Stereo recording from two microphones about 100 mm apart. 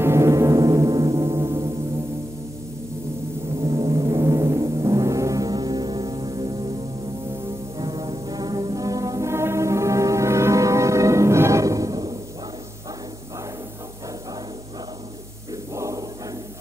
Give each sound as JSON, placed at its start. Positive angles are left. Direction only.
{"t": 0.0, "sound": "gong", "side_deg": -30}
{"t": 3.9, "sound": "music", "side_deg": -40}
{"t": 7.8, "sound": "brass instrument", "side_deg": -45}
{"t": 15.7, "sound": "a sound", "side_deg": -35}